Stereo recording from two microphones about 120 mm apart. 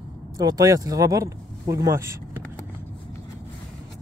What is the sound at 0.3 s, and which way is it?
Speech, 30° right (ahead or behind).